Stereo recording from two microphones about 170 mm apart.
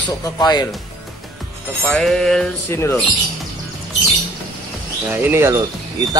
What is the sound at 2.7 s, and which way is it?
Speech, 15° left (ahead or behind).